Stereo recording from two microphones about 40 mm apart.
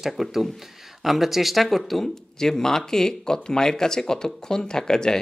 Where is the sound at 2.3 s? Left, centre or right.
Centre.